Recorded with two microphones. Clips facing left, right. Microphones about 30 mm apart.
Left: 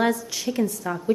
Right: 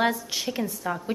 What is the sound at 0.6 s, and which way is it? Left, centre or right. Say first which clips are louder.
Speech: left 3 dB; centre.